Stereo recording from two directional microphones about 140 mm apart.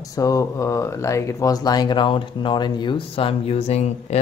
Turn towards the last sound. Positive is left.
turn(degrees=50)  # may be behind; listen again after turning